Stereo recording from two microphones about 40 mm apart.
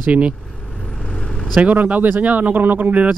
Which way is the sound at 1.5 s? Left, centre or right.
Right.